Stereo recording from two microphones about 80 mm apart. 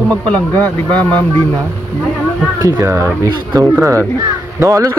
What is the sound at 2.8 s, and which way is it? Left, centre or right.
Speech, right.